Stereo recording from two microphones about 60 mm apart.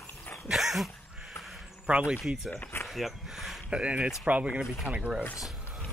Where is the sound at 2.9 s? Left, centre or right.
Centre.